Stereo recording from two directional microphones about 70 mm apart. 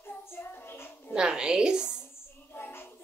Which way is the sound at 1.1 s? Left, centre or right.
Centre.